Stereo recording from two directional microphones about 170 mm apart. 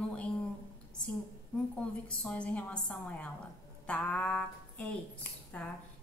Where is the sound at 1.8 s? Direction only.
5° left (ahead or behind).